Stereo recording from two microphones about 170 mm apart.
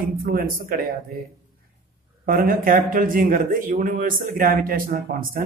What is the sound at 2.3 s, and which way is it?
Speech, 55° right (ahead or behind).